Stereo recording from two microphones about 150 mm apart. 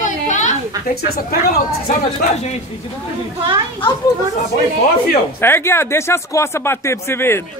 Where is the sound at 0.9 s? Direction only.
85° left.